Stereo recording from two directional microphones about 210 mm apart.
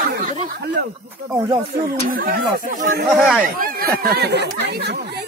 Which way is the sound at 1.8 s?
40° right (ahead or behind).